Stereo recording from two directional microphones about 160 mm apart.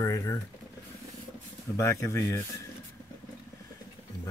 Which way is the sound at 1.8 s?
15° left (ahead or behind).